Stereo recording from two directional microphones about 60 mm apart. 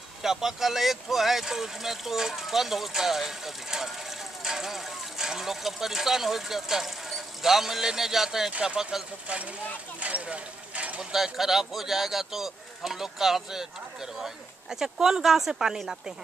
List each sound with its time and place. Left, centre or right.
0.2 s speech: centre
9.3 s speech: right
9.9 s a sound: right
11.0 s speech: centre